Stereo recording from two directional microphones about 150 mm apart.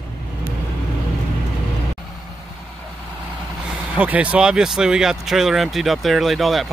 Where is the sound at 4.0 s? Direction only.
10° right (ahead or behind).